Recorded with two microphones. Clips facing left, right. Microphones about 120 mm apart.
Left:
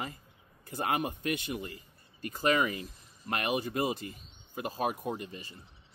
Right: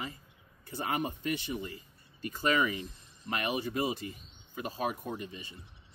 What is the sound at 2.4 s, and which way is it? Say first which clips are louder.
Speech: left 1 dB; 45° left (ahead or behind).